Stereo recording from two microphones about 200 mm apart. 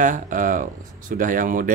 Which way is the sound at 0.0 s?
40° right (ahead or behind).